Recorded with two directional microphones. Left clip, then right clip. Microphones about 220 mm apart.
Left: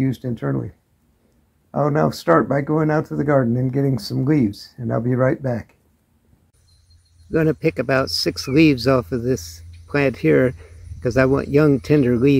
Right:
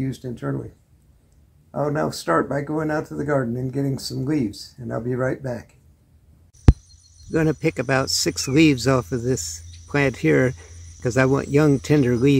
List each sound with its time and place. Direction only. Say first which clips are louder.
0.0 s speech: left 5 dB; 35° left (ahead or behind)
1.7 s speech: left 4 dB; 35° left (ahead or behind)
7.2 s speech: left 3 dB; 5° right (ahead or behind)